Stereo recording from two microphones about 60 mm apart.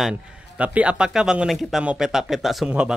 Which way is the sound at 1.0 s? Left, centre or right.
Centre.